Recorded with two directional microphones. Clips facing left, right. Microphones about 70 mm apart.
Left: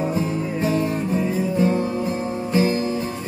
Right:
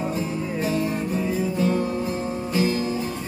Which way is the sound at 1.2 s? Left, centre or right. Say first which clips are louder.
Left 2 dB; left.